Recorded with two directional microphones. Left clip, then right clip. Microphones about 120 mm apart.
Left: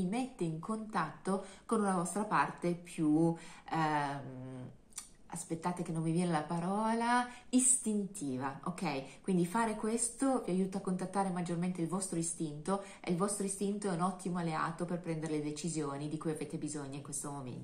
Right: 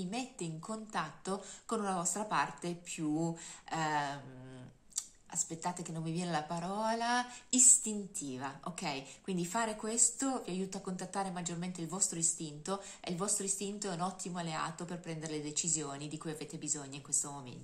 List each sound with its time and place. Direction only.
0.1 s speech: 20° right (ahead or behind)